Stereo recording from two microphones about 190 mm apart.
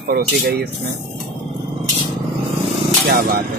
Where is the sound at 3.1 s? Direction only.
45° right (ahead or behind).